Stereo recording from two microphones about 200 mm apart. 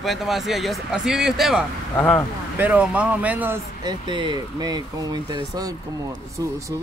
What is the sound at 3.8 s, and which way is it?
Speech, 25° right (ahead or behind).